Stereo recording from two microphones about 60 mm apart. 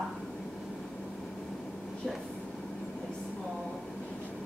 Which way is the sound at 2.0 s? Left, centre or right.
Centre.